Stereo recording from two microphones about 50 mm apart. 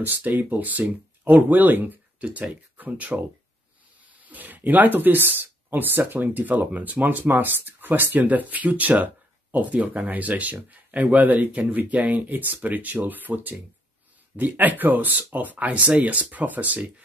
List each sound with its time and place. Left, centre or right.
0.0 s speech: right
2.2 s speech: right
4.2 s speech: right